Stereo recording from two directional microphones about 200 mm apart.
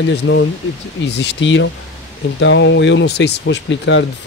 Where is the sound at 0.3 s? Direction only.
65° left (ahead or behind).